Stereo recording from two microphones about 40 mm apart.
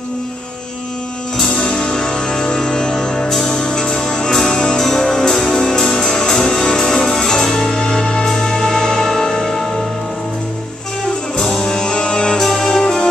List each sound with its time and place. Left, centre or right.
1.4 s music: left
11.3 s music: centre